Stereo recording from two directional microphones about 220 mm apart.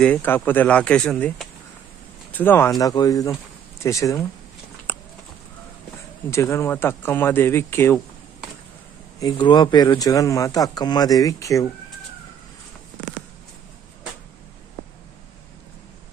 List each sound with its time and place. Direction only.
0.0 s speech: 5° left (ahead or behind)
4.9 s a sound: 10° left (ahead or behind)
6.3 s speech: 15° left (ahead or behind)
9.2 s speech: 20° left (ahead or behind)